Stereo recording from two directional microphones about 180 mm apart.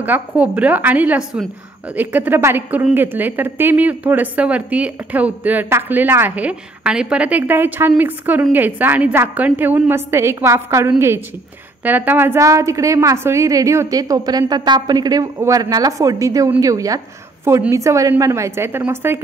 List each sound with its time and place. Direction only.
0.0 s a woman's voice: 10° right (ahead or behind)